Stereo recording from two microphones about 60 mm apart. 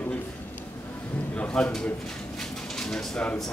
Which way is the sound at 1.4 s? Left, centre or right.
Centre.